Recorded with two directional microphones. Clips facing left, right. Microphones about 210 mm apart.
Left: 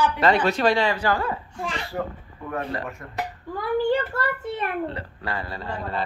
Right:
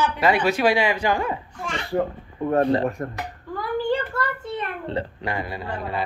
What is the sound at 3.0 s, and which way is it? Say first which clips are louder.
Speech: right 11 dB; 45° right (ahead or behind).